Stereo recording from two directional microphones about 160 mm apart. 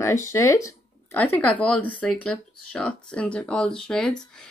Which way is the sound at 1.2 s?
10° left (ahead or behind).